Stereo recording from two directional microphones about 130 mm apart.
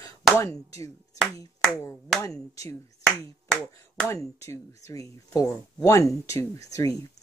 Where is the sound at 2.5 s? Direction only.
25° left (ahead or behind).